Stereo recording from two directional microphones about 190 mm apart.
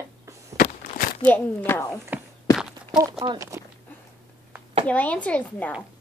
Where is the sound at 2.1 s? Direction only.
10° right (ahead or behind).